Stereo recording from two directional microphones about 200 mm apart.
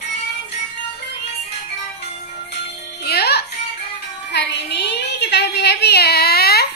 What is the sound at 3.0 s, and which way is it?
Music, 55° left (ahead or behind).